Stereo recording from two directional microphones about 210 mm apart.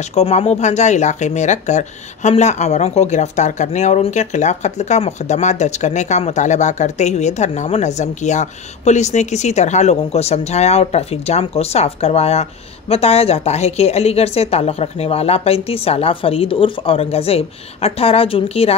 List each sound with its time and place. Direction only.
0.0 s speech: 30° left (ahead or behind)